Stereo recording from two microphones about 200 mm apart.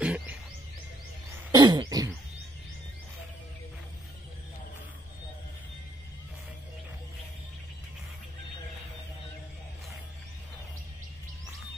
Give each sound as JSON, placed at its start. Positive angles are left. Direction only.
{"t": 0.0, "sound": "music", "side_deg": -5}
{"t": 1.5, "sound": "throat clearing", "side_deg": -20}